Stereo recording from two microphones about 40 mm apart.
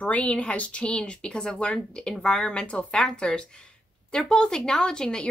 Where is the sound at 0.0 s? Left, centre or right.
Left; by 5.3 s centre.